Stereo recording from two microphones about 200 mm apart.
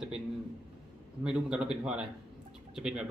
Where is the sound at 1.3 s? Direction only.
5° right (ahead or behind).